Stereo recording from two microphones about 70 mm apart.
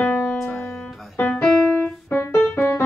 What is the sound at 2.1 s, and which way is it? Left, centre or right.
Keyboard, left.